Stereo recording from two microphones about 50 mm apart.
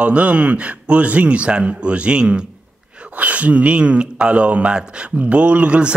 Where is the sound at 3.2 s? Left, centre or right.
Right.